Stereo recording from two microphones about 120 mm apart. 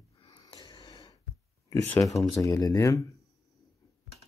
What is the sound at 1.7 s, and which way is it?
Speech, 25° left (ahead or behind).